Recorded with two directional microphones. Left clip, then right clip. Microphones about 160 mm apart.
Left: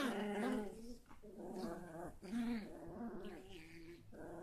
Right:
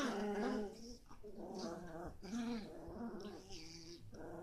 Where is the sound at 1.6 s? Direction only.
15° left (ahead or behind).